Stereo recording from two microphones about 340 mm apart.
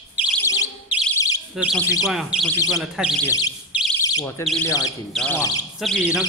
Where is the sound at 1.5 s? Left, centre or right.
Centre.